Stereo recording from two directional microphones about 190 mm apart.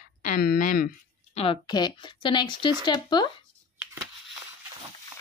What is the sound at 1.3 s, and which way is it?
Speech, 30° left (ahead or behind).